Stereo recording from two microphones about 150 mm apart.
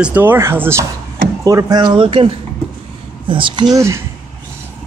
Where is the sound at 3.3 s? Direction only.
35° right (ahead or behind).